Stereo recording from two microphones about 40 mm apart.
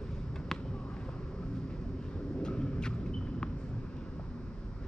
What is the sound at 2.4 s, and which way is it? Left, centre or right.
Vehicle, left.